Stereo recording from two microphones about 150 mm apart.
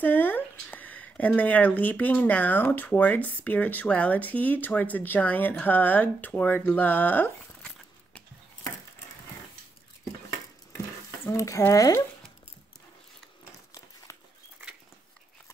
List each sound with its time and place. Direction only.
0.0 s speech: 10° left (ahead or behind)
11.1 s speech: 20° left (ahead or behind)